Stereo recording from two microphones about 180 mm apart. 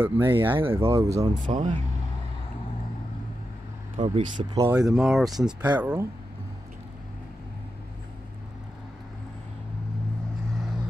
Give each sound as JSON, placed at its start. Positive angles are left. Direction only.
{"t": 0.0, "sound": "speech", "side_deg": -15}
{"t": 1.4, "sound": "speech", "side_deg": -45}
{"t": 4.0, "sound": "speech", "side_deg": -45}
{"t": 4.4, "sound": "speech", "side_deg": -20}
{"t": 4.9, "sound": "speech", "side_deg": 0}